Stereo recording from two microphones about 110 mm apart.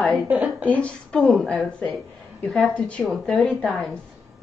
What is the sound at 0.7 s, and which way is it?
A woman's voice, 10° left (ahead or behind).